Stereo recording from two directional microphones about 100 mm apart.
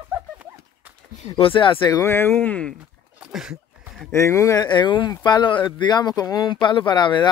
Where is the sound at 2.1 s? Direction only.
20° left (ahead or behind).